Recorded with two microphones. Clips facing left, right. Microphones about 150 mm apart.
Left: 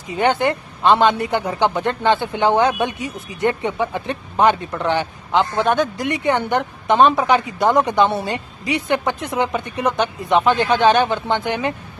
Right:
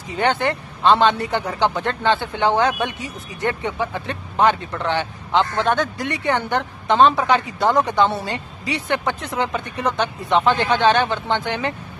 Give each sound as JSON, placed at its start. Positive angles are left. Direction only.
{"t": 0.2, "sound": "a man's voice", "side_deg": 15}